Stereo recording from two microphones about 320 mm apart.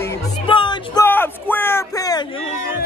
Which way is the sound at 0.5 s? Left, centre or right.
Centre.